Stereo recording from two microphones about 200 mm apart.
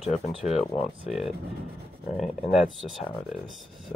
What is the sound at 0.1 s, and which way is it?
Speech, 35° left (ahead or behind).